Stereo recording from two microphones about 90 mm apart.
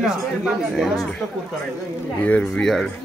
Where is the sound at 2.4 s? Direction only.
5° left (ahead or behind).